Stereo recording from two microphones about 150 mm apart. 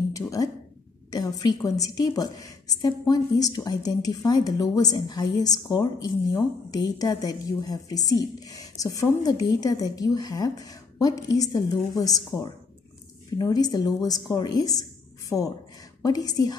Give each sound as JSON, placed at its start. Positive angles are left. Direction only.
{"t": 0.1, "sound": "a woman's voice", "side_deg": 20}